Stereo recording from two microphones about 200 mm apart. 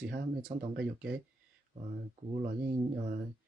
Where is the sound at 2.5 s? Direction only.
40° right (ahead or behind).